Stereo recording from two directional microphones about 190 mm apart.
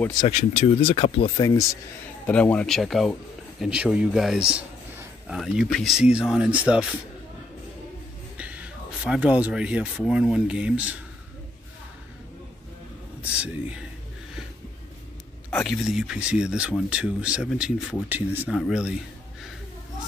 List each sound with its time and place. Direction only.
0.2 s speech: 35° left (ahead or behind)
1.3 s speech: 20° left (ahead or behind)
2.2 s speech: 10° left (ahead or behind)
8.4 s speech: 5° right (ahead or behind)
13.2 s speech: 5° right (ahead or behind)
15.5 s speech: centre (ahead or behind)